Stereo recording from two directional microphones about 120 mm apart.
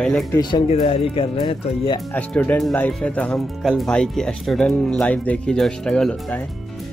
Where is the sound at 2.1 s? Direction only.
15° left (ahead or behind).